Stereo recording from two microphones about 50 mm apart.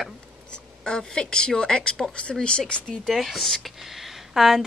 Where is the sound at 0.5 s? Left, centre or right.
Centre.